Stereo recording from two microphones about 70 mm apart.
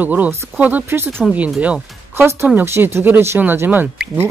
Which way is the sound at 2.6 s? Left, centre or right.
Right.